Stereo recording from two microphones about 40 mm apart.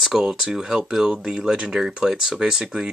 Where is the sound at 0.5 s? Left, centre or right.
Centre.